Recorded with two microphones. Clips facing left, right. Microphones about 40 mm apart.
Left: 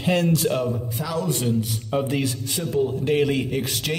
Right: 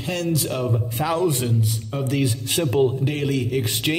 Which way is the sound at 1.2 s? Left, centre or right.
Centre.